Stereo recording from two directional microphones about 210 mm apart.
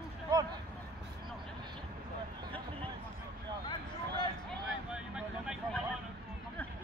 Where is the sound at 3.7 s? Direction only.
20° left (ahead or behind).